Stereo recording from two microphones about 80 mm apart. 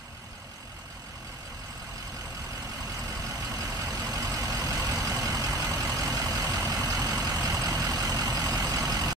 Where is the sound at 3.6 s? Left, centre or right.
Right.